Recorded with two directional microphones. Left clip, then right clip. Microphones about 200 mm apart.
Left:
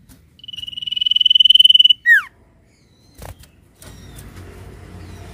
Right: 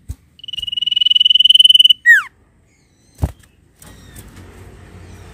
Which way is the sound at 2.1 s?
15° right (ahead or behind).